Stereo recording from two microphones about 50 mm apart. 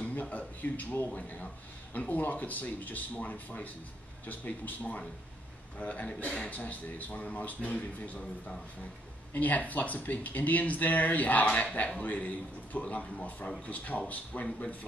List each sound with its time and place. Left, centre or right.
0.0 s a man's voice: left
9.3 s speech: left